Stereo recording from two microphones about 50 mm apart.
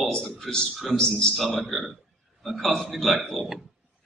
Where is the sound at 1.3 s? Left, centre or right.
Centre.